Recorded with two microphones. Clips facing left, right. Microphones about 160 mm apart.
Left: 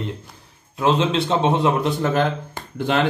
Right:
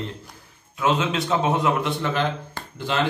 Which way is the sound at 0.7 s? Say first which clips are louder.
Left 4 dB; 35° left (ahead or behind).